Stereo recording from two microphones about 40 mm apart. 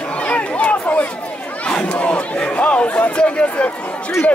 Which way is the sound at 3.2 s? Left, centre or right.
Left.